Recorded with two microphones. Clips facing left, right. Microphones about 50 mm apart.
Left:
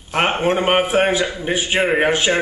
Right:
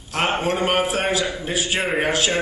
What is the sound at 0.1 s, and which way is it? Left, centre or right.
A man's voice, left.